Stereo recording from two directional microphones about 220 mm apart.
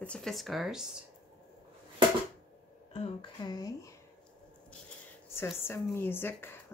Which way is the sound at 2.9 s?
20° left (ahead or behind).